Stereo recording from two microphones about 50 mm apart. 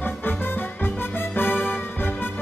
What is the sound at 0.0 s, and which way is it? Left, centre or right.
Music, left.